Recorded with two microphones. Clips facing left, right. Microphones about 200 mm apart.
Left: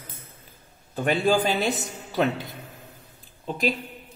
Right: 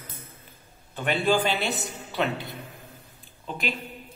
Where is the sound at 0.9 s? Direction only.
40° left (ahead or behind).